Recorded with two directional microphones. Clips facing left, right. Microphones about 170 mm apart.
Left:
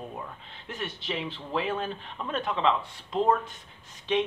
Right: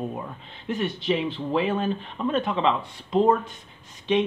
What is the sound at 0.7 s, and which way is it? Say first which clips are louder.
Speech: right 10 dB; 15° right (ahead or behind).